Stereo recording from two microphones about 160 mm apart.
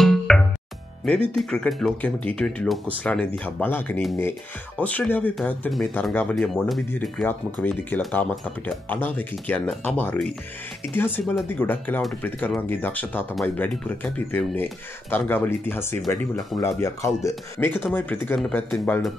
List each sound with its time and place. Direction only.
0.0 s music: centre (ahead or behind)
1.0 s speech: 5° left (ahead or behind)
11.4 s speech: 10° left (ahead or behind)